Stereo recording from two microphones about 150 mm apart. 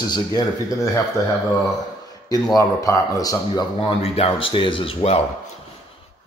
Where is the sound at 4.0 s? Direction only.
40° left (ahead or behind).